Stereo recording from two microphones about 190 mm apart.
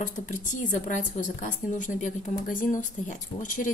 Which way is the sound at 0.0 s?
40° left (ahead or behind).